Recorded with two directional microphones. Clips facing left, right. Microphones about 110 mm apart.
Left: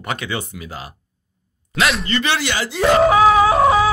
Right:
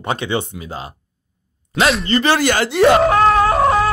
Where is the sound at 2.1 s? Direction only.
40° right (ahead or behind); by 2.8 s 60° right (ahead or behind).